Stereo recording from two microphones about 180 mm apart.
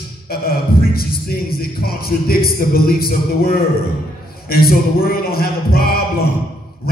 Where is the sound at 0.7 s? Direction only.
55° left (ahead or behind).